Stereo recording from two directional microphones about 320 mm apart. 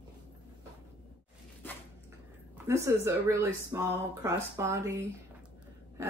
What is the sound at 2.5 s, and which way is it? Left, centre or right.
Speech, centre.